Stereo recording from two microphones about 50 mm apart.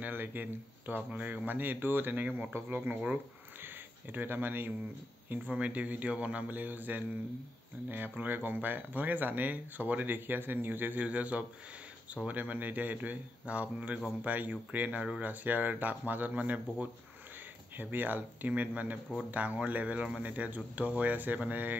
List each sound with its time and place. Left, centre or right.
0.0 s speech: right
2.5 s speech: right
5.3 s speech: right
11.1 s speech: right